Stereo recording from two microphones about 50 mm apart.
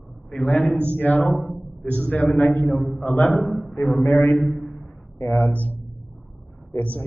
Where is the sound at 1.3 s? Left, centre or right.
Centre.